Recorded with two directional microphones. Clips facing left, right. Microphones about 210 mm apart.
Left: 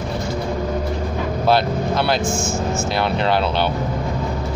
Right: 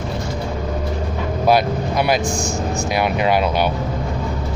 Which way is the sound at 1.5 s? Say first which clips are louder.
Right 1 dB; 15° right (ahead or behind).